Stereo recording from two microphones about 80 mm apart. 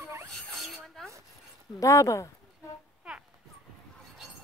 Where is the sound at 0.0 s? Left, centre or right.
Right.